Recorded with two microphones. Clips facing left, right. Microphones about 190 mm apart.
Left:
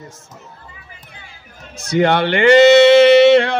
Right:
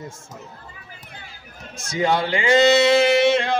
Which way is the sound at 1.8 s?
65° left (ahead or behind).